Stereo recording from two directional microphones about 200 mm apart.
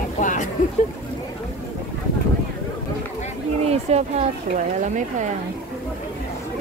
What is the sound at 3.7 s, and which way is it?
Speech, 30° right (ahead or behind).